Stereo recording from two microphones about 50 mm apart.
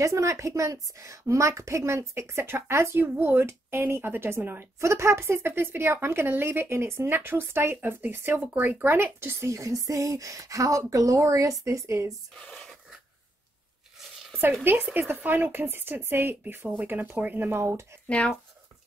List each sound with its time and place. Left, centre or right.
0.0 s a woman's voice: right
4.7 s speech: right
9.5 s a woman's voice: right
12.4 s speech: centre
14.6 s speech: right
17.6 s a woman's voice: right
18.0 s speech: left